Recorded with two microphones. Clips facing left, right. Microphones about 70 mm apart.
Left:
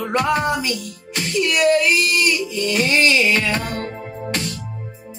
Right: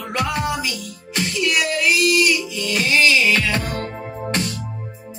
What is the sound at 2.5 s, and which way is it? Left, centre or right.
Music, left.